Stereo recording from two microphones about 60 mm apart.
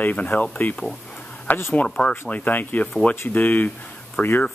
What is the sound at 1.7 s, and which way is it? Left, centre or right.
Speech, centre.